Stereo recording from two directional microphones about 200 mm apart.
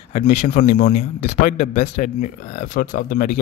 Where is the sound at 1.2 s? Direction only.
35° left (ahead or behind).